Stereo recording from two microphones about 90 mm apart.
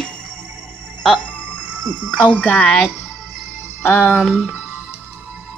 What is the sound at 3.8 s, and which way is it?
Speech, 15° left (ahead or behind).